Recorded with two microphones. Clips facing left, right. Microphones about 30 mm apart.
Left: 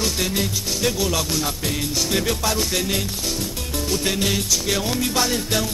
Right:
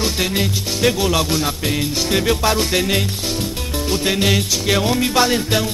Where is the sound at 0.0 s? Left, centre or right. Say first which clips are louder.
Right 3 dB; right.